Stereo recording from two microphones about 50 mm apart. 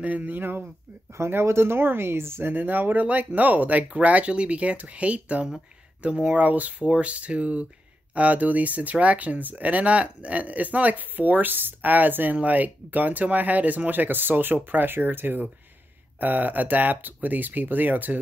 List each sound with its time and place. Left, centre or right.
0.0 s speech: right
1.1 s speech: right
2.5 s speech: right